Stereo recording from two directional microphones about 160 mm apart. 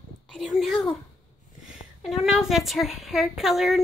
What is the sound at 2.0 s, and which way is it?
Speech, centre (ahead or behind).